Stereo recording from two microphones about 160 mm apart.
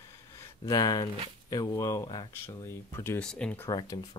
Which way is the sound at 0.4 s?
20° left (ahead or behind).